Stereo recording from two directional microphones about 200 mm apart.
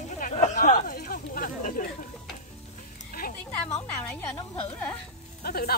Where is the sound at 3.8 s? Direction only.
10° left (ahead or behind).